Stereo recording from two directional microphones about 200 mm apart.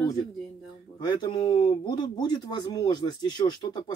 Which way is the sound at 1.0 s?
20° left (ahead or behind).